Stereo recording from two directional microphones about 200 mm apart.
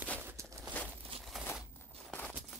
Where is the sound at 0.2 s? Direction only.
15° right (ahead or behind).